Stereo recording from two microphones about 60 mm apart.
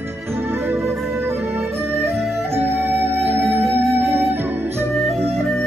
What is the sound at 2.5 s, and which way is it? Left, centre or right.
Music, right.